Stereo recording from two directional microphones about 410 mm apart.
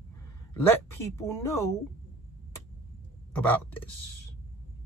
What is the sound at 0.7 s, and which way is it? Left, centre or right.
Speech, centre.